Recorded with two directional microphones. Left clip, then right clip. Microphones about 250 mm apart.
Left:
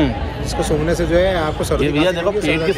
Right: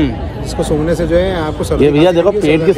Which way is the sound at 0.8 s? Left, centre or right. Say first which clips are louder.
Right 2 dB; centre.